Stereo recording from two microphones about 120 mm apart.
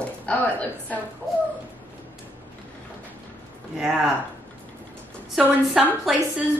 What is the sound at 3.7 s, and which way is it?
Speech, 5° right (ahead or behind).